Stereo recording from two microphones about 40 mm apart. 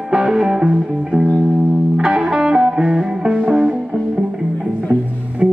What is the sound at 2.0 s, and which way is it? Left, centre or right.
Music, centre.